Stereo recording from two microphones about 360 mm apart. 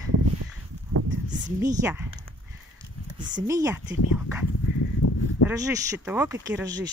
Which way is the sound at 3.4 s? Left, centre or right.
Centre.